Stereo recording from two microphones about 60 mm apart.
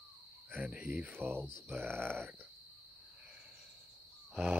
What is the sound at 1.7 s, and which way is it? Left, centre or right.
Speech, right.